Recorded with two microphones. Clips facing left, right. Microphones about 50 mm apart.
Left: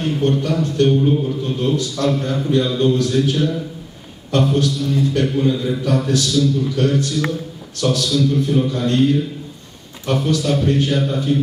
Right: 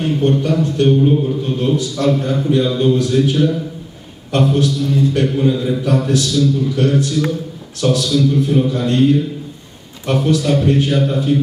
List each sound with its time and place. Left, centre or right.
0.0 s a man's voice: centre
4.6 s a man's voice: centre